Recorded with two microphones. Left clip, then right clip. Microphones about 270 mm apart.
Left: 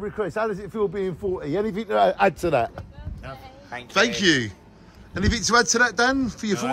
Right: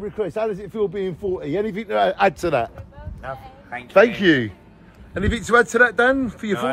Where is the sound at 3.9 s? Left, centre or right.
Centre.